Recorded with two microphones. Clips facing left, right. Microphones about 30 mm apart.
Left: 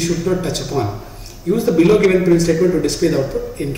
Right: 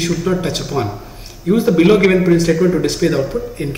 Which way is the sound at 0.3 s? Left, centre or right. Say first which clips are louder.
Right 1 dB; right.